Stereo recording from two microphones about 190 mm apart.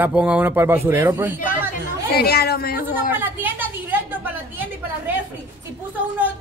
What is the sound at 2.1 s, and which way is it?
Speech, 55° left (ahead or behind).